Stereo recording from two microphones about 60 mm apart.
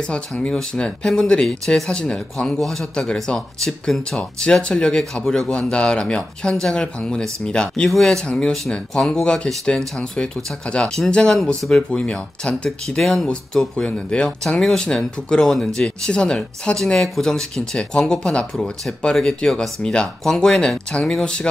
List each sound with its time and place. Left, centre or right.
0.0 s speech: centre